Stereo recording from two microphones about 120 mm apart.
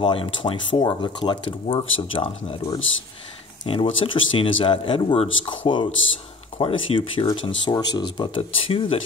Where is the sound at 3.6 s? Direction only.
40° left (ahead or behind).